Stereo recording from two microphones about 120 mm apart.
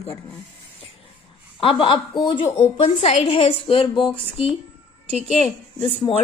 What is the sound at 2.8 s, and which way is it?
Speech, 60° left (ahead or behind).